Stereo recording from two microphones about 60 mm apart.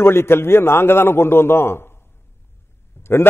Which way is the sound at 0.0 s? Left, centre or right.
Left.